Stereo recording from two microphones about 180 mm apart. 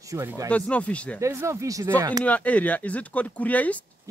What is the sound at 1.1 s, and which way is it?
Speech, 15° right (ahead or behind).